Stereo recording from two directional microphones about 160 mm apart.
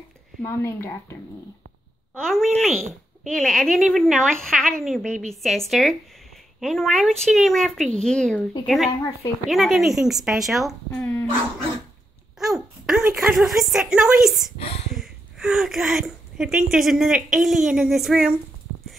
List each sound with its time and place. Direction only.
0.4 s speech: 15° left (ahead or behind)
2.1 s a woman's voice: centre (ahead or behind)
12.4 s a woman's voice: centre (ahead or behind)
14.6 s a sound: 40° left (ahead or behind)
15.0 s a woman's voice: 5° right (ahead or behind)